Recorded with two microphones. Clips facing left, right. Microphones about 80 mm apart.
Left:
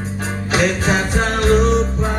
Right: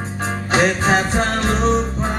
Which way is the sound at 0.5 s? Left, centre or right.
Right.